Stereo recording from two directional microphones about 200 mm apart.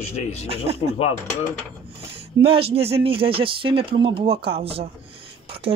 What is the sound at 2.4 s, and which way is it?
Speech, 30° right (ahead or behind).